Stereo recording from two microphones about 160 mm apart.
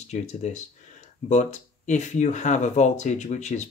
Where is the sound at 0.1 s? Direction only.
45° left (ahead or behind).